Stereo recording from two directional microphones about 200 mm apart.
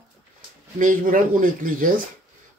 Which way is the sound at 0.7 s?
40° right (ahead or behind).